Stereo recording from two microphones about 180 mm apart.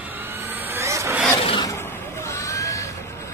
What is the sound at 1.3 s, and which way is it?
Filing, 30° left (ahead or behind).